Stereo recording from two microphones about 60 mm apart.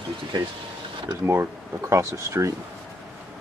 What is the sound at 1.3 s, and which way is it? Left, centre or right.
Speech, right.